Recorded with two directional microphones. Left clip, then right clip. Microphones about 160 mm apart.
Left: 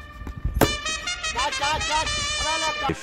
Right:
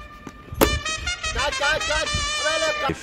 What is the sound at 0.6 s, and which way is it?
Music, centre (ahead or behind).